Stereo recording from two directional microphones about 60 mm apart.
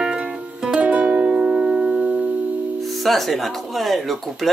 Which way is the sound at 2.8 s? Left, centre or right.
Centre.